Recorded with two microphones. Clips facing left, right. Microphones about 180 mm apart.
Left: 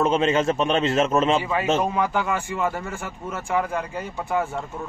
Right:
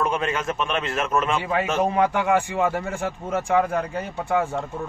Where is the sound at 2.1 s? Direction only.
80° right.